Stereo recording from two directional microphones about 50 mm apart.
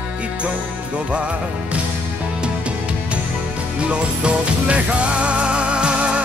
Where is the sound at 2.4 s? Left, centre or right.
Right.